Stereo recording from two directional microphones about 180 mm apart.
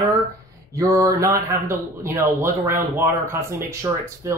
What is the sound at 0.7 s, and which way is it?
Speech, 20° right (ahead or behind).